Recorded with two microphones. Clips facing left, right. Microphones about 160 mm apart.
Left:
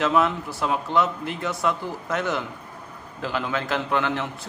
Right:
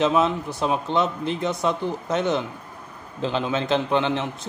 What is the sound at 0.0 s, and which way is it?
Speech, 20° right (ahead or behind).